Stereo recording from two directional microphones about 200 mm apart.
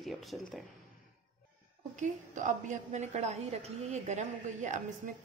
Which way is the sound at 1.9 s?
40° right (ahead or behind).